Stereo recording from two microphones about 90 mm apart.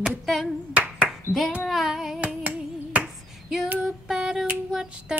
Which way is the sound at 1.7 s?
Centre (ahead or behind).